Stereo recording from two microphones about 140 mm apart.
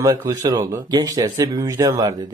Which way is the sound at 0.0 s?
25° right (ahead or behind).